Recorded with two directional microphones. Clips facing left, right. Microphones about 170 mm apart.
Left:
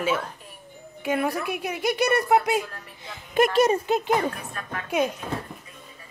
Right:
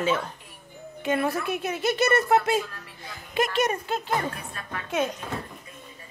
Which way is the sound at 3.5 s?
30° left (ahead or behind).